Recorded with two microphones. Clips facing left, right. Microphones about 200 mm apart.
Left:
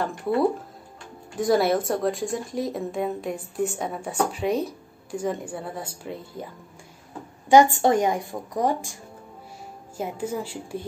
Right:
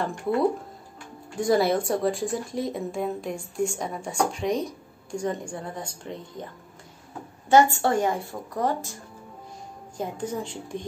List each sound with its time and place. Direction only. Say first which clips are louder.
0.0 s a woman's voice: left 1 dB; 5° left (ahead or behind)
9.9 s a woman's voice: left 1 dB; 5° left (ahead or behind)